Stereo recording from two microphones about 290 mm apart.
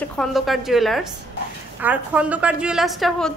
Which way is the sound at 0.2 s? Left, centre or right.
Centre.